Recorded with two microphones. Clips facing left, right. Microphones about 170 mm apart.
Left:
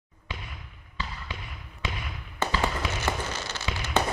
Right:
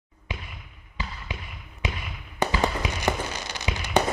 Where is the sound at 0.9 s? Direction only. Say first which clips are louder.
Right 1 dB; 15° right (ahead or behind).